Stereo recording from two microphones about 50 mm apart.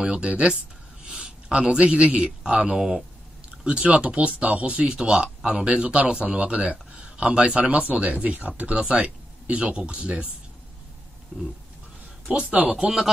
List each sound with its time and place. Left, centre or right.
0.0 s a man's voice: centre
2.4 s speech: centre
11.3 s speech: right
12.7 s speech: centre